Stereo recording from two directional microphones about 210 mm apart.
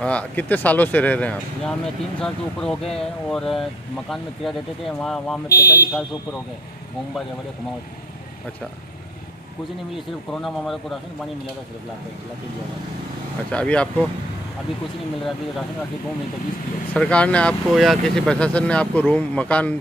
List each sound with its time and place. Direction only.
0.0 s speech: 5° left (ahead or behind)
5.5 s speech: 50° left (ahead or behind)
9.9 s speech: centre (ahead or behind)
13.5 s speech: 5° left (ahead or behind)
16.9 s speech: 5° left (ahead or behind)